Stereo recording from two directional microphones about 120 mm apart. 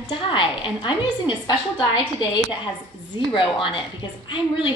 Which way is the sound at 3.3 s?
45° left (ahead or behind).